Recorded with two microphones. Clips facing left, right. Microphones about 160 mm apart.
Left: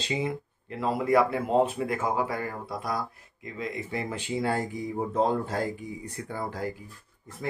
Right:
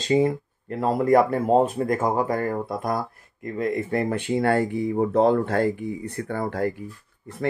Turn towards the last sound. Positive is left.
turn(degrees=-65)  # may be behind; listen again after turning